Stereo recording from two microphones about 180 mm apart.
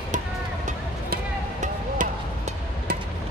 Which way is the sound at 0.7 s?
45° right (ahead or behind).